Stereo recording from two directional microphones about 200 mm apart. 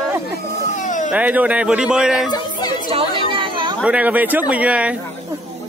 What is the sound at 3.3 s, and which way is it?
Chatter, 25° right (ahead or behind).